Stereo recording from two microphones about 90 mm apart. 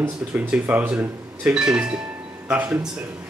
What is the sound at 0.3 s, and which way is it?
Speech, 15° right (ahead or behind).